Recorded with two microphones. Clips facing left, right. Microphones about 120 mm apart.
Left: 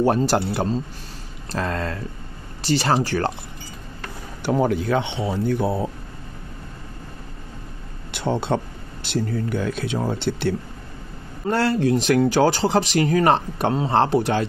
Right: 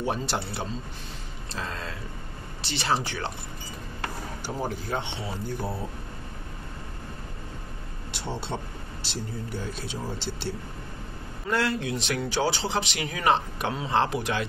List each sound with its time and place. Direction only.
0.0 s speech: 45° left (ahead or behind)
1.5 s speech: 55° left (ahead or behind)
2.6 s speech: 40° left (ahead or behind)
4.4 s speech: 70° left (ahead or behind)
8.1 s speech: 55° left (ahead or behind)
11.4 s speech: 35° left (ahead or behind)